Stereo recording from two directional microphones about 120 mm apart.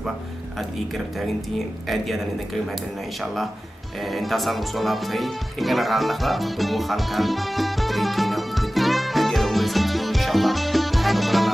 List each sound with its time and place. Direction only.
0.6 s speech: centre (ahead or behind)
4.0 s music: centre (ahead or behind)